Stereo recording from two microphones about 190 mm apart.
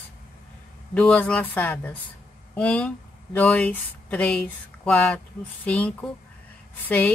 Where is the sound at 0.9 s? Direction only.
5° left (ahead or behind).